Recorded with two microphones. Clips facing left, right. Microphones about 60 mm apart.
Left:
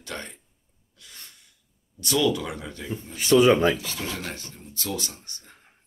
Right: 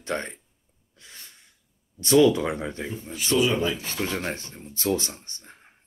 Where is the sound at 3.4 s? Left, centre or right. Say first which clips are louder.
Left 5 dB; left.